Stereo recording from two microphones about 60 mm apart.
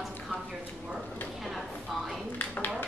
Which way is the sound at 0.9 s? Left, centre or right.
Centre.